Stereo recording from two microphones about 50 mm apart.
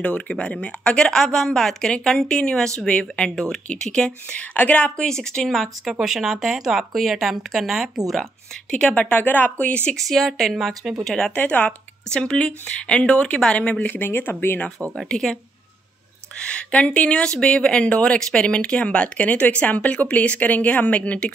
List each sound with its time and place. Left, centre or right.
0.0 s speech: left
1.1 s speech: centre; by 4.9 s left
4.9 s speech: centre
5.5 s speech: centre
5.9 s speech: centre
8.7 s speech: left
9.9 s speech: centre
11.3 s speech: left
13.9 s speech: left
16.3 s speech: left
19.1 s speech: left